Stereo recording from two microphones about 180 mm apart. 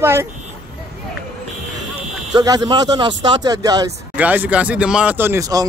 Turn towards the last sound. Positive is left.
turn(degrees=-20)  # may be behind; listen again after turning